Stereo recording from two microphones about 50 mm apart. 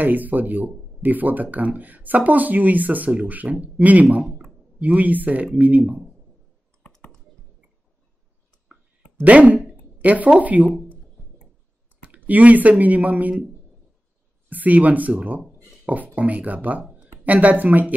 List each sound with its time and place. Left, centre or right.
0.0 s speech: right
4.3 s a sound: centre
4.7 s speech: right
9.2 s speech: right
12.0 s speech: right
14.5 s speech: right